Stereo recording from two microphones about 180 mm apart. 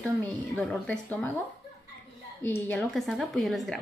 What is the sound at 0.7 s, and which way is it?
Speech, 5° left (ahead or behind).